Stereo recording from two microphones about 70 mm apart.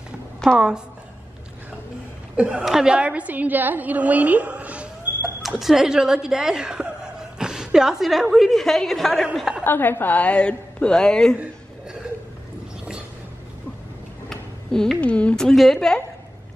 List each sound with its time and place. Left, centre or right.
0.6 s a woman's voice: centre
2.3 s a woman's voice: centre
5.6 s speech: centre
9.6 s a woman's voice: left; by 11.3 s centre
14.3 s a sound: centre
15.0 s speech: centre
15.4 s a woman's voice: centre